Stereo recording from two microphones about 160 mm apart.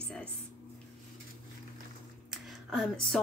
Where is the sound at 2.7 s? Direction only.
Centre (ahead or behind).